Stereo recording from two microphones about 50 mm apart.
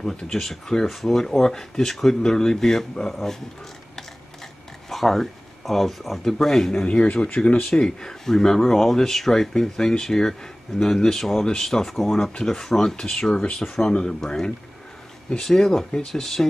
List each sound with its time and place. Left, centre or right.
0.0 s speech: centre
4.8 s speech: centre
6.9 s speech: left
13.6 s speech: centre